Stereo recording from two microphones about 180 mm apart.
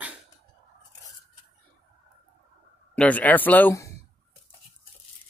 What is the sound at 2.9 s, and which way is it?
Speech, 5° left (ahead or behind).